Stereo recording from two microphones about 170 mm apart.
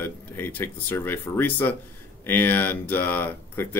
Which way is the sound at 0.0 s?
10° left (ahead or behind).